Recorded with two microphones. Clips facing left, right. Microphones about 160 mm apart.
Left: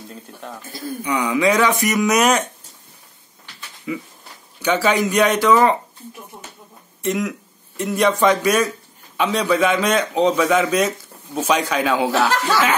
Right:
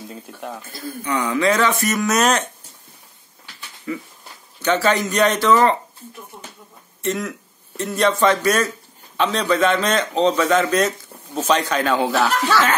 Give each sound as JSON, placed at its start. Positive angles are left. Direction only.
{"t": 0.1, "sound": "speech", "side_deg": -10}
{"t": 1.0, "sound": "a man's voice", "side_deg": 15}
{"t": 3.9, "sound": "a man's voice", "side_deg": 10}
{"t": 6.3, "sound": "a sound", "side_deg": 20}
{"t": 7.0, "sound": "a man's voice", "side_deg": 10}